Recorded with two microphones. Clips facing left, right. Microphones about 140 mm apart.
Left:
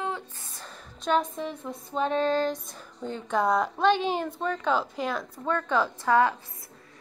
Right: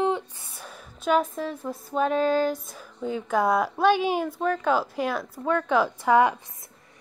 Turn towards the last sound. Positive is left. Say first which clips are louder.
# right 3 dB
turn(degrees=-15)  # may be behind; listen again after turning